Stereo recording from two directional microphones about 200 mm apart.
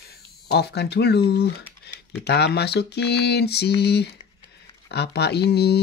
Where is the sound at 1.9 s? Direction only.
55° left (ahead or behind).